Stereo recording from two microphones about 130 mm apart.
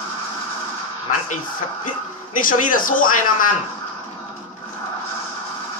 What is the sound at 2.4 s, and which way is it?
Speech, 90° left.